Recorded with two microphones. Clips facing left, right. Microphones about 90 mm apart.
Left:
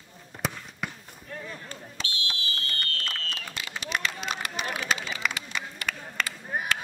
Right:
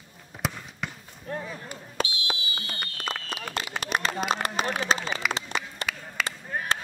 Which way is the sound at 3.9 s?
45° right (ahead or behind).